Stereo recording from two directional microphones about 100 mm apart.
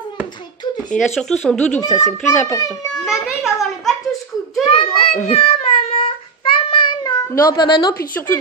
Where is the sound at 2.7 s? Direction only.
Centre (ahead or behind).